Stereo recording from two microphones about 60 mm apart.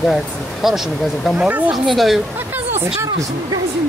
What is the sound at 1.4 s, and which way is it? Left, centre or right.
Speech, right.